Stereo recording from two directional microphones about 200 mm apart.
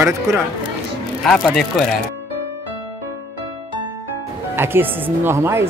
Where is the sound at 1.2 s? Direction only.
5° left (ahead or behind).